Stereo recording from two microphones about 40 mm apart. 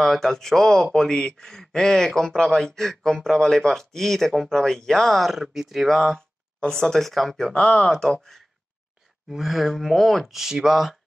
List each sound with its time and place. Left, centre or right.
0.0 s a man's voice: centre
5.1 s speech: centre
6.7 s speech: centre
7.0 s speech: centre
7.3 s speech: centre
9.4 s speech: centre